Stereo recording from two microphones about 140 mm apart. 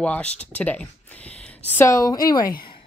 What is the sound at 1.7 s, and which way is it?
Speech, 20° left (ahead or behind).